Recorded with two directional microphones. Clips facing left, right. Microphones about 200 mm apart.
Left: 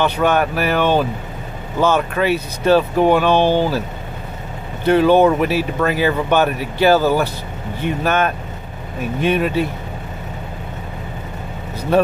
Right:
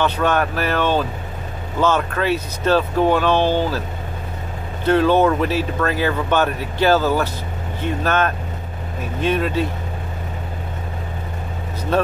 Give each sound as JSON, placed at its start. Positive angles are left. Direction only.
{"t": 0.0, "sound": "speech", "side_deg": 10}
{"t": 4.8, "sound": "speech", "side_deg": 10}
{"t": 11.9, "sound": "speech", "side_deg": 10}